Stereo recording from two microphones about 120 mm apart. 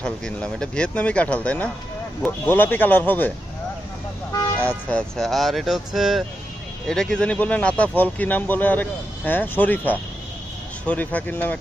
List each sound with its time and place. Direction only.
0.0 s speech: 5° left (ahead or behind)
4.6 s speech: 10° left (ahead or behind)